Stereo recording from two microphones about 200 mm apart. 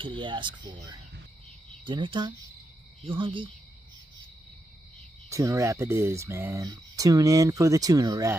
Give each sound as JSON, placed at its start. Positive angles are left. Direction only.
{"t": 0.0, "sound": "speech", "side_deg": -25}
{"t": 1.9, "sound": "speech", "side_deg": -25}
{"t": 5.3, "sound": "speech", "side_deg": -15}